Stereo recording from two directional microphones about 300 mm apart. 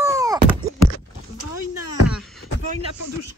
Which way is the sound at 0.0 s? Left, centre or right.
Centre.